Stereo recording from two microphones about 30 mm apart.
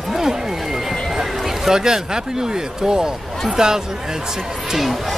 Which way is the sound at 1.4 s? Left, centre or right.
Centre.